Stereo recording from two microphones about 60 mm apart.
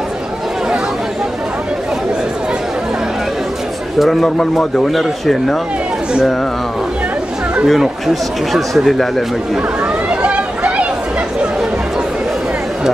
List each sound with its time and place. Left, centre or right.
4.0 s a man's voice: centre
7.6 s a man's voice: centre
10.0 s chatter: right